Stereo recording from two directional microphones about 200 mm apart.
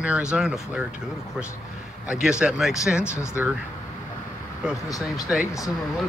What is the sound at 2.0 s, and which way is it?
Speech, 5° right (ahead or behind).